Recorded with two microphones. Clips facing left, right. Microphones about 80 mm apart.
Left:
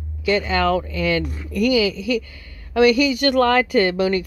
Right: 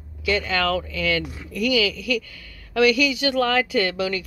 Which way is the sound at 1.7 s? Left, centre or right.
Left.